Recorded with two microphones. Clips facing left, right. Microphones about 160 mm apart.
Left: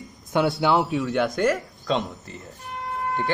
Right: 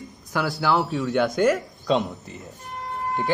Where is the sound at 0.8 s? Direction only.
Centre (ahead or behind).